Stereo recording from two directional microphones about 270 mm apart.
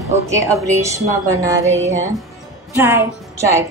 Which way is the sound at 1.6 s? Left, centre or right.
Right.